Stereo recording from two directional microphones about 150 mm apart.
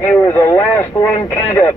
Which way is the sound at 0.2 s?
15° left (ahead or behind).